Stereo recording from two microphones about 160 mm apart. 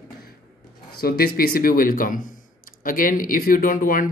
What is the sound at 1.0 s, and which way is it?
Speech, 70° left (ahead or behind).